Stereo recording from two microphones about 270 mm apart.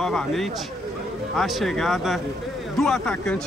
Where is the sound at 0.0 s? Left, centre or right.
Centre.